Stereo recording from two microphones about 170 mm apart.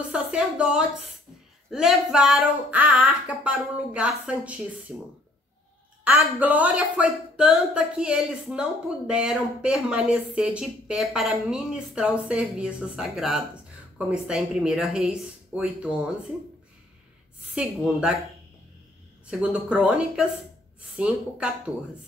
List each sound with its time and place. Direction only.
0.1 s speech: 5° right (ahead or behind)
6.0 s speech: 10° right (ahead or behind)
17.6 s speech: 5° right (ahead or behind)
19.4 s speech: 5° right (ahead or behind)